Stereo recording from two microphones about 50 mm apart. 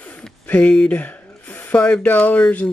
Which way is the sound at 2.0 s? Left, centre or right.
Left.